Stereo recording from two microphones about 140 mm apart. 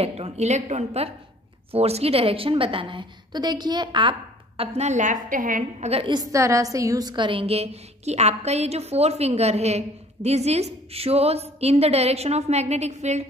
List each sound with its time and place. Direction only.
0.0 s a woman's voice: 50° right (ahead or behind)
4.7 s a woman's voice: 55° right (ahead or behind)
5.9 s a woman's voice: 45° right (ahead or behind)
6.1 s a woman's voice: 20° right (ahead or behind); by 13.2 s 55° right (ahead or behind)